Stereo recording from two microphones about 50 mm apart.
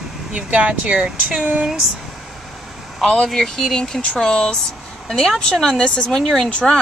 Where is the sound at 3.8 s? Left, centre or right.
Centre.